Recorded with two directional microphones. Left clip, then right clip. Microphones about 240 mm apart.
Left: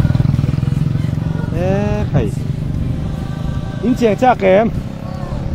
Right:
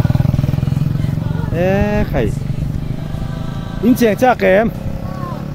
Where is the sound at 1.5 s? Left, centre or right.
Right.